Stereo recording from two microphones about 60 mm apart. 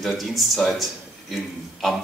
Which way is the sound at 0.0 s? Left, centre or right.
Centre.